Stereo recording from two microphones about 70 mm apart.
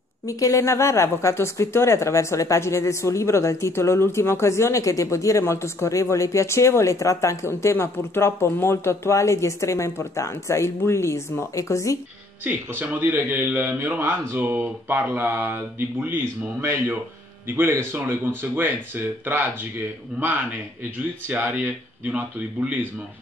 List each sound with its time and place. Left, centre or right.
0.3 s speech: left
12.4 s a man's voice: right
21.3 s a man's voice: right